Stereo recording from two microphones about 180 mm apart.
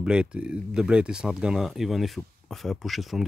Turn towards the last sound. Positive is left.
turn(degrees=0)  # may be behind; listen again after turning